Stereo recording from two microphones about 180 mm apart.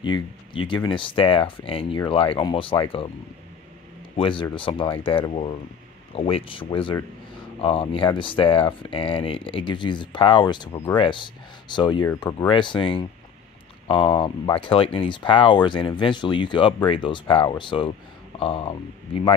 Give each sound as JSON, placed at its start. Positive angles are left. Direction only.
{"t": 0.0, "sound": "speech", "side_deg": 25}
{"t": 4.2, "sound": "speech", "side_deg": 30}